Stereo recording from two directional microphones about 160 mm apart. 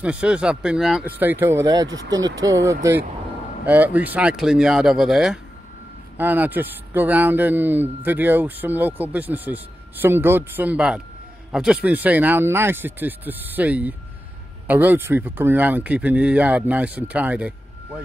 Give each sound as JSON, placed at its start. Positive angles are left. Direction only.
{"t": 0.0, "sound": "speech", "side_deg": -10}